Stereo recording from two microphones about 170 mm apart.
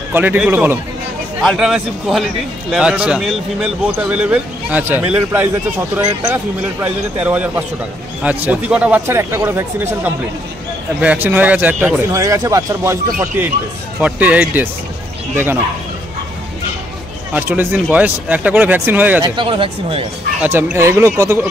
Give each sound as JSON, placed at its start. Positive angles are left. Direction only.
{"t": 0.1, "sound": "a man's voice", "side_deg": -10}
{"t": 1.4, "sound": "a man's voice", "side_deg": 0}
{"t": 17.3, "sound": "a man's voice", "side_deg": -10}
{"t": 19.2, "sound": "speech", "side_deg": -30}
{"t": 20.4, "sound": "a man's voice", "side_deg": -10}